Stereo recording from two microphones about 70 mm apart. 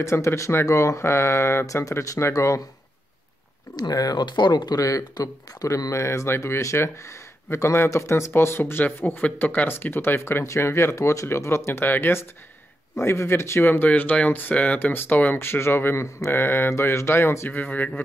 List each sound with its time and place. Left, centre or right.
0.0 s speech: left
2.3 s speech: left
3.7 s speech: left
4.7 s speech: left
13.7 s speech: left
17.5 s speech: left